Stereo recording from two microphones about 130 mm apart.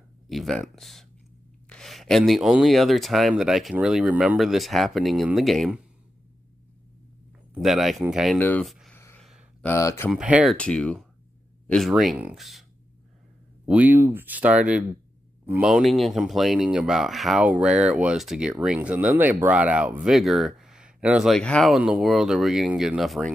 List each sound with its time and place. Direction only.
0.3 s speech: centre (ahead or behind)
7.6 s speech: centre (ahead or behind)
8.4 s speech: 15° left (ahead or behind)
8.6 s a sound: centre (ahead or behind)
8.9 s a sound: 15° left (ahead or behind)
9.2 s a sound: centre (ahead or behind)
9.7 s speech: 20° left (ahead or behind)
10.1 s speech: 5° right (ahead or behind)
10.6 s speech: 10° left (ahead or behind)
11.6 s a sound: 5° left (ahead or behind)
11.9 s speech: 5° right (ahead or behind)
13.7 s a man's voice: 10° right (ahead or behind)
15.7 s speech: centre (ahead or behind)
21.3 s speech: 5° left (ahead or behind)